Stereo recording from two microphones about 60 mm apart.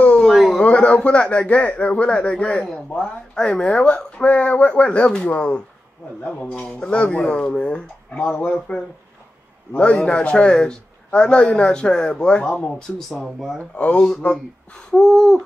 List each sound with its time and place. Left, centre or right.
0.0 s a sound: centre
0.3 s a sound: centre
0.6 s a man's voice: left
10.0 s speech: centre
13.1 s speech: centre
13.6 s a man's voice: centre
14.9 s speech: centre